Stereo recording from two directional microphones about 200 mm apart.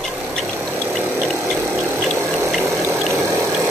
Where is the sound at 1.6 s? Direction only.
10° right (ahead or behind).